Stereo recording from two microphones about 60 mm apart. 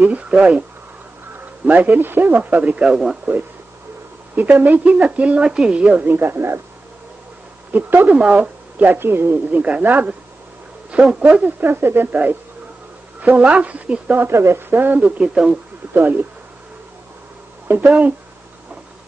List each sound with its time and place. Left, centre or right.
0.0 s speech: right
1.7 s speech: right
2.8 s a man's voice: centre
4.4 s speech: right
6.0 s speech: right
7.7 s a woman's voice: right
9.5 s speech: right
11.6 s speech: right; by 14.1 s centre
14.1 s speech: right
14.7 s speech: right
15.0 s speech: centre
15.9 s speech: right
17.6 s speech: right